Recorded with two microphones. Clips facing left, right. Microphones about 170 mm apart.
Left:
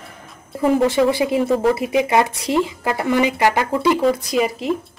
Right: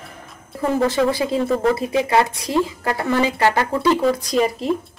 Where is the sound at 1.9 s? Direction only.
15° left (ahead or behind).